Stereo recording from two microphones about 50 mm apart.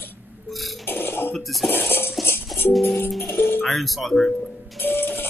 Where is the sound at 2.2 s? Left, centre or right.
Left.